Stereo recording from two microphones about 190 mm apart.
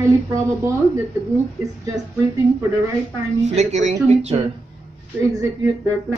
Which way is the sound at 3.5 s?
35° right (ahead or behind).